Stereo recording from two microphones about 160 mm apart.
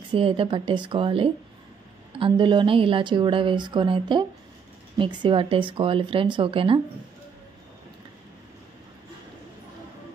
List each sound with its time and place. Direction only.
0.1 s speech: 35° right (ahead or behind)